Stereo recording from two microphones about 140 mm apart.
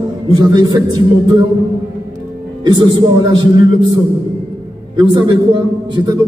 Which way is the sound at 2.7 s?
30° right (ahead or behind).